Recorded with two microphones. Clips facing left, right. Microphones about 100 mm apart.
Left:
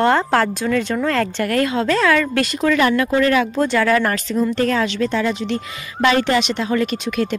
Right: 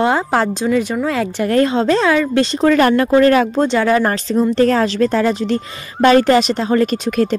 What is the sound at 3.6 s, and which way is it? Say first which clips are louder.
Speech: right 2 dB; 25° right (ahead or behind).